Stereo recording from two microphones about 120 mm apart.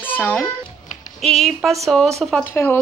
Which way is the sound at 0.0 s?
15° left (ahead or behind).